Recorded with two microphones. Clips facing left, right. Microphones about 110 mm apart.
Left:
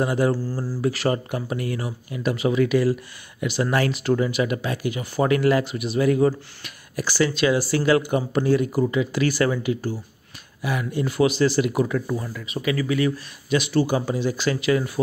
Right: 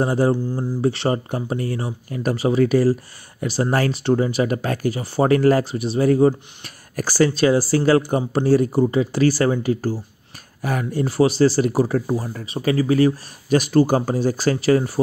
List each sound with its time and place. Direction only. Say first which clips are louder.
0.0 s speech: right 3 dB; 30° right (ahead or behind)
0.5 s speech: right 4 dB; 20° right (ahead or behind)
2.0 s speech: right 2 dB; 40° right (ahead or behind)